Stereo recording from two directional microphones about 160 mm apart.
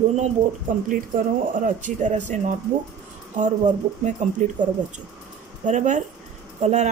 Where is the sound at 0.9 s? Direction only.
55° right (ahead or behind).